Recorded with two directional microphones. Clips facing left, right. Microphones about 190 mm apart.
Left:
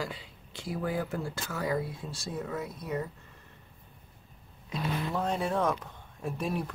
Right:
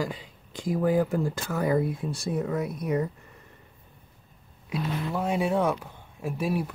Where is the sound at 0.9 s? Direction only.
15° right (ahead or behind).